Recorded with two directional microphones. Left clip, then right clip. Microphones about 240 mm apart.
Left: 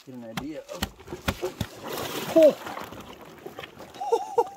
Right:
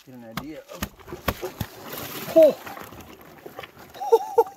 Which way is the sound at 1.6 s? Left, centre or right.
Centre.